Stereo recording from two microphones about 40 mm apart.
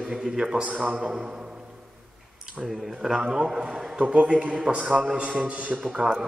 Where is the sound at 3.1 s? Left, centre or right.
Centre; by 5.8 s right.